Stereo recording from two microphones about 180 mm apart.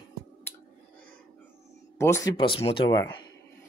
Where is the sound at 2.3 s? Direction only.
30° left (ahead or behind).